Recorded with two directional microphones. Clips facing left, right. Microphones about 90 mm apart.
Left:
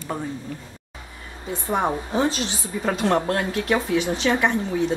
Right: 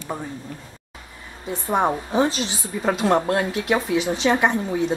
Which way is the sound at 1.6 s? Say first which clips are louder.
Right 2 dB; 15° right (ahead or behind).